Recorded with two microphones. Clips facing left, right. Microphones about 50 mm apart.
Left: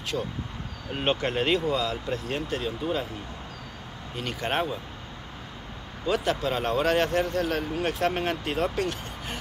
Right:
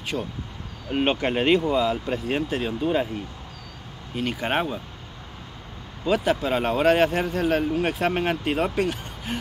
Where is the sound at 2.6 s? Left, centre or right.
Right.